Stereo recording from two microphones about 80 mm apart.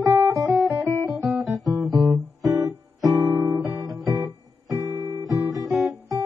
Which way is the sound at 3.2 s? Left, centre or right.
Right.